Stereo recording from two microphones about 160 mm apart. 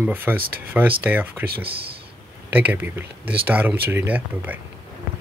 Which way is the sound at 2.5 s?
10° right (ahead or behind).